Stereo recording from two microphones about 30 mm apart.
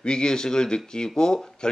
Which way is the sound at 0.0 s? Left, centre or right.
Left.